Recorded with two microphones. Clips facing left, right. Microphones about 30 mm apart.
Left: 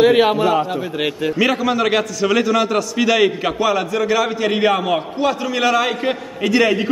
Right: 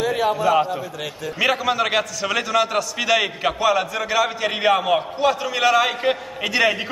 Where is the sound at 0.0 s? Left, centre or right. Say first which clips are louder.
Left 8 dB; left.